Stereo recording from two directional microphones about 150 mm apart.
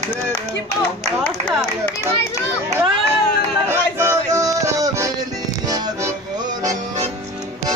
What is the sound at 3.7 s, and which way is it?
Music, 20° right (ahead or behind).